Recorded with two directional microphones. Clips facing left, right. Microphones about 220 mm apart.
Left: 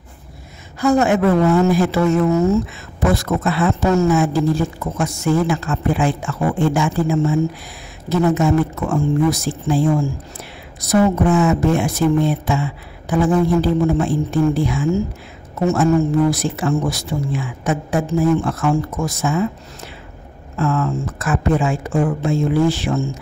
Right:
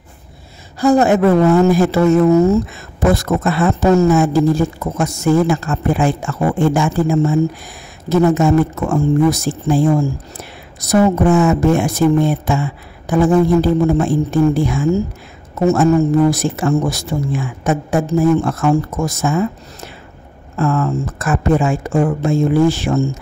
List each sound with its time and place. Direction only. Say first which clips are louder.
0.7 s speech: right 3 dB; 35° right (ahead or behind)